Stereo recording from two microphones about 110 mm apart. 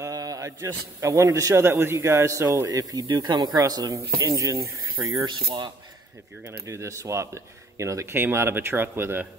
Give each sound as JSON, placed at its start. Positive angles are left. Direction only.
{"t": 0.0, "sound": "a man's voice", "side_deg": -35}
{"t": 5.2, "sound": "speech", "side_deg": -45}
{"t": 6.4, "sound": "speech", "side_deg": -25}